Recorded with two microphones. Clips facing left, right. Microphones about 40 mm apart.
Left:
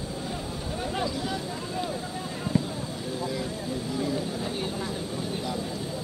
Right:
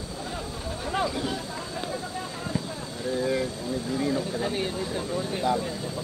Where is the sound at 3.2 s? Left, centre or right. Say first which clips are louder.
Right 6 dB; right.